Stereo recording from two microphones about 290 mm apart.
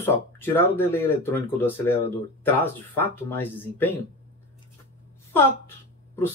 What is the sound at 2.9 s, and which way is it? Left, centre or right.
Speech, centre.